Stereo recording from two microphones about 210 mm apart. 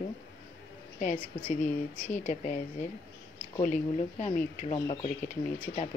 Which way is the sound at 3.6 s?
40° left (ahead or behind).